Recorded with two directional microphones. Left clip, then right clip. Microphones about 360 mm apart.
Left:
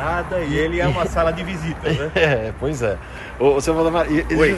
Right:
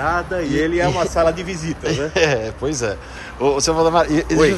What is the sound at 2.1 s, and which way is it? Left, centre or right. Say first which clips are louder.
Speech: even; centre.